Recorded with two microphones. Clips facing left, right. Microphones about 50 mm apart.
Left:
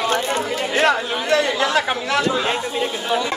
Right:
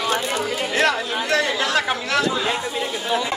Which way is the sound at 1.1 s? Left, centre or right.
Left.